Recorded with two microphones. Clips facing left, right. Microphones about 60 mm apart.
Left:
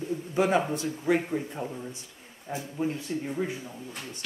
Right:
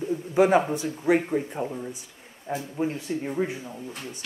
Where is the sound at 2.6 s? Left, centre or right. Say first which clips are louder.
Even; right.